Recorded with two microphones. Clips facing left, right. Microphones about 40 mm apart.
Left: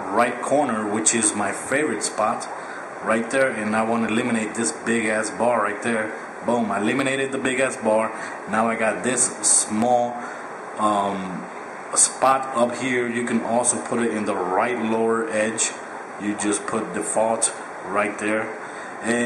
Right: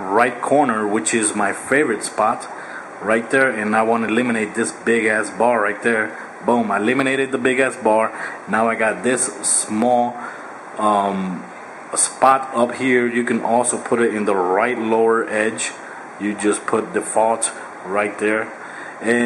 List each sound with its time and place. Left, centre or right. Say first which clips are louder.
0.2 s a man's voice: right 4 dB; centre
0.5 s a man's voice: right 5 dB; centre